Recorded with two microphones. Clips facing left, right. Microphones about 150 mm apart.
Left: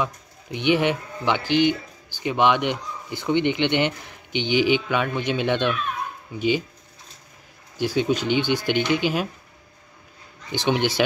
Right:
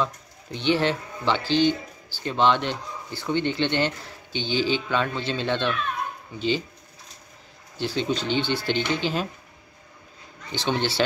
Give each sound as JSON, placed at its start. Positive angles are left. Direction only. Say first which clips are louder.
{"t": 0.0, "sound": "speech", "louder": "even", "side_deg": 15}
{"t": 7.7, "sound": "speech", "louder": "left 4 dB", "side_deg": 10}
{"t": 10.5, "sound": "speech", "louder": "left 3 dB", "side_deg": 15}